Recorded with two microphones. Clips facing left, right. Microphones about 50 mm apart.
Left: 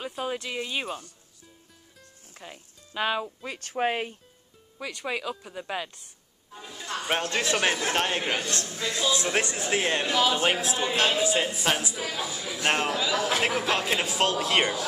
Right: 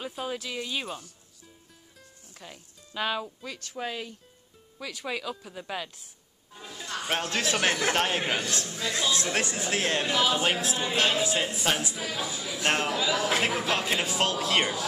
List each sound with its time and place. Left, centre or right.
0.0 s a sound: centre
0.3 s speech: centre
2.3 s speech: centre
3.4 s speech: left
5.0 s speech: centre